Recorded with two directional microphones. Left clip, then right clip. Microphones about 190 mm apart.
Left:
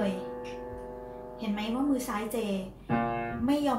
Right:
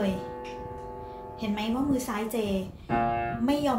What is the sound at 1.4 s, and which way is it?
A woman's voice, 55° right (ahead or behind).